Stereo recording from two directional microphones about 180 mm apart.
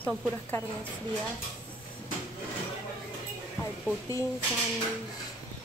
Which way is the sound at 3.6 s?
20° left (ahead or behind).